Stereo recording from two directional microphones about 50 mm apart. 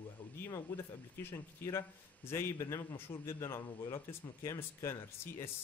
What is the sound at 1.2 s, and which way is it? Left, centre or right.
Speech, left.